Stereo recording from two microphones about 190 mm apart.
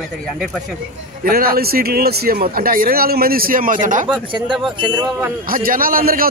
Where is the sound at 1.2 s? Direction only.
50° right (ahead or behind).